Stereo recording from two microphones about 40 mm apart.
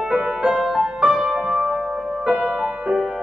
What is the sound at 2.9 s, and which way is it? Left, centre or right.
Music, centre.